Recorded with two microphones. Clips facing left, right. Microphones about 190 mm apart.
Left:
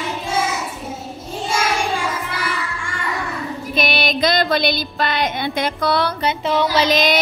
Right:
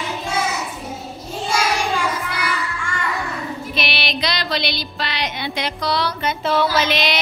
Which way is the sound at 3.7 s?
45° left (ahead or behind).